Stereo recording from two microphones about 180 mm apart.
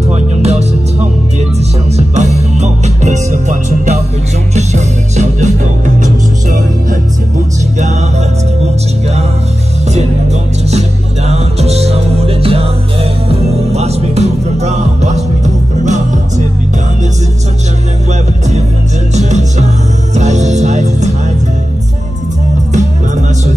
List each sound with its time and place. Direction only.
0.1 s music: 40° right (ahead or behind)
2.0 s music: 35° right (ahead or behind)
10.7 s music: 35° right (ahead or behind)
19.1 s music: 40° right (ahead or behind)
22.7 s music: 40° right (ahead or behind)